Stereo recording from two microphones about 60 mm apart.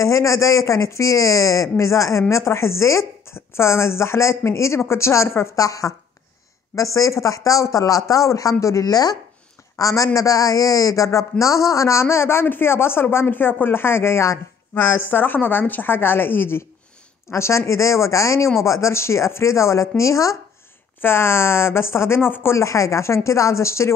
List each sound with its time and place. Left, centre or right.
0.0 s speech: left
5.6 s speech: left
9.8 s speech: left
14.7 s a woman's voice: left
17.3 s speech: left
21.0 s speech: left
22.6 s speech: left